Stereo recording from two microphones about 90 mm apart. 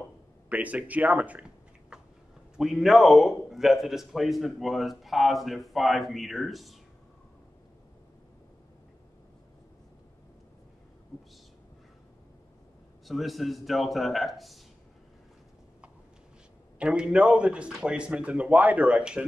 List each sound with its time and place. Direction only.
0.5 s speech: 15° right (ahead or behind)
2.5 s a man's voice: 5° right (ahead or behind)
13.0 s a man's voice: centre (ahead or behind)
16.7 s speech: 10° right (ahead or behind)